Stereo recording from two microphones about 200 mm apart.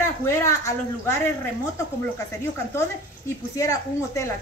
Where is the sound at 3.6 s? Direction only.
15° left (ahead or behind).